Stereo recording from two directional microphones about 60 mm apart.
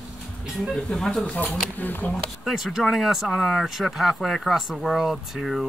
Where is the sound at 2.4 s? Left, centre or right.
Centre.